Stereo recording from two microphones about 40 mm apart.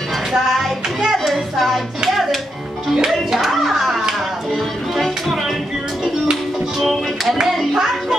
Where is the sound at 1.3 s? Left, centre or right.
Centre.